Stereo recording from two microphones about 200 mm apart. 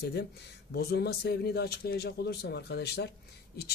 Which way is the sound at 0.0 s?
55° left (ahead or behind).